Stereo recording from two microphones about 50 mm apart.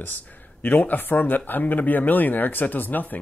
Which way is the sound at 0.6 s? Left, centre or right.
Left.